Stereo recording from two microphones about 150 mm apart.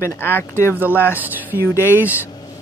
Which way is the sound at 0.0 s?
15° left (ahead or behind).